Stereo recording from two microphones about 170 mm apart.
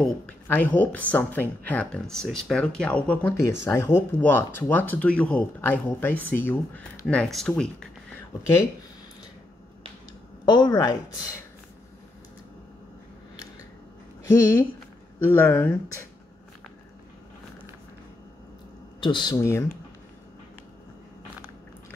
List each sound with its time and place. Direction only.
0.0 s speech: 10° left (ahead or behind)
10.4 s a woman's voice: 25° left (ahead or behind)
15.1 s speech: 15° left (ahead or behind)
18.9 s a woman's voice: 25° left (ahead or behind)